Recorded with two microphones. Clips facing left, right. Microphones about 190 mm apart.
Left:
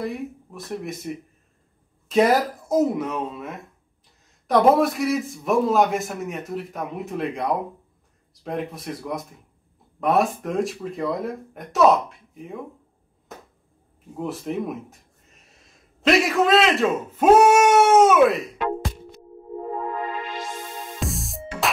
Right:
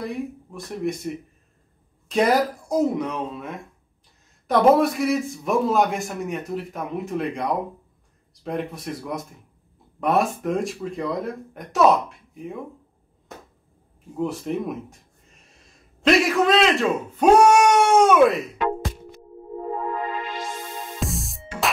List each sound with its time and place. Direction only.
0.0 s a man's voice: centre (ahead or behind)
14.1 s a man's voice: centre (ahead or behind)
16.0 s a man's voice: centre (ahead or behind)
17.2 s cat: 5° left (ahead or behind)
21.0 s music: centre (ahead or behind)